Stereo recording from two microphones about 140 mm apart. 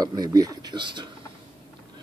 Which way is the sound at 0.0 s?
30° right (ahead or behind).